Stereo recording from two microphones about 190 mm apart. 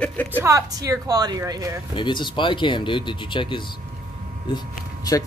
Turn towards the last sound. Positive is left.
turn(degrees=20)  # may be behind; listen again after turning